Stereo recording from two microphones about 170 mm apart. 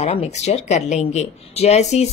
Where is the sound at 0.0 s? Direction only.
40° left (ahead or behind).